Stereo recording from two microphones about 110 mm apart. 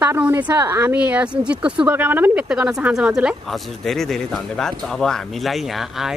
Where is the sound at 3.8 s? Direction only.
5° left (ahead or behind).